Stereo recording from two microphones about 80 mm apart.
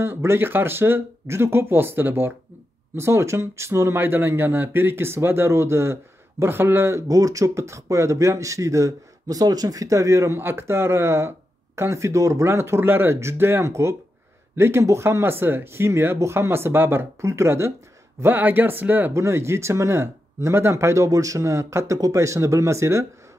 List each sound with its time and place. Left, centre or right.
0.0 s speech: right
19.1 s speech: right